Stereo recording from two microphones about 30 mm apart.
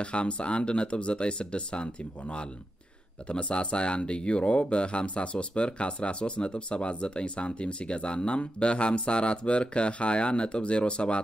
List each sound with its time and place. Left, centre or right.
0.0 s speech: left